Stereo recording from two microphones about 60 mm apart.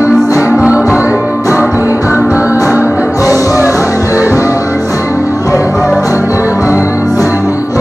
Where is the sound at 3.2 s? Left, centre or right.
Left.